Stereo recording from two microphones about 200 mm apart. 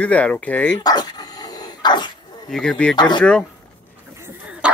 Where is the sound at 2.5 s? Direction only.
5° left (ahead or behind).